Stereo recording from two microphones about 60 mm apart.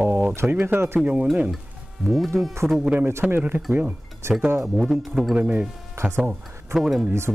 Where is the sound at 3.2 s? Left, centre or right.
Right.